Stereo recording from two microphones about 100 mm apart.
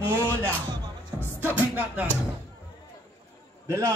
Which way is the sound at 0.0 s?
25° right (ahead or behind).